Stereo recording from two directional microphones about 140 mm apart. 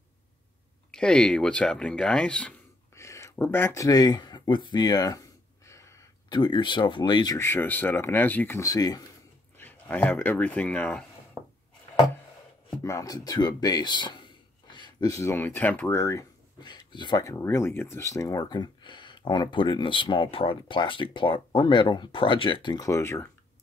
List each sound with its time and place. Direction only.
0.9 s speech: 5° left (ahead or behind)
3.0 s a sound: 20° left (ahead or behind)
3.4 s speech: 15° left (ahead or behind); by 7.3 s 30° left (ahead or behind)
7.3 s speech: 15° left (ahead or behind)
9.6 s speech: 15° left (ahead or behind)
12.6 s speech: 25° left (ahead or behind)
16.5 s speech: 30° left (ahead or behind)